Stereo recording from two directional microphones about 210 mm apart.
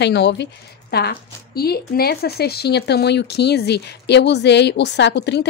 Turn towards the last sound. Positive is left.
turn(degrees=55)  # may be behind; listen again after turning